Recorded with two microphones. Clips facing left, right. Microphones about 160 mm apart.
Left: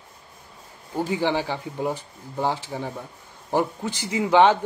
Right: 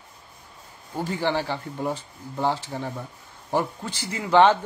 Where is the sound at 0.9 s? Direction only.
15° left (ahead or behind).